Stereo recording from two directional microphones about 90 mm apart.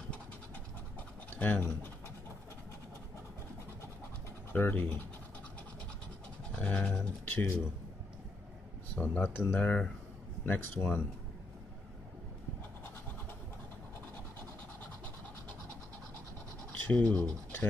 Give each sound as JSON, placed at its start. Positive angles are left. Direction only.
{"t": 1.3, "sound": "speech", "side_deg": 20}
{"t": 4.5, "sound": "speech", "side_deg": 20}
{"t": 6.5, "sound": "speech", "side_deg": 15}
{"t": 8.9, "sound": "speech", "side_deg": 20}
{"t": 16.8, "sound": "scratch", "side_deg": 15}